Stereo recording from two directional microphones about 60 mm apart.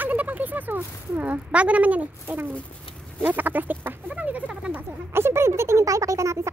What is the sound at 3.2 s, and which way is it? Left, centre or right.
Bird, right.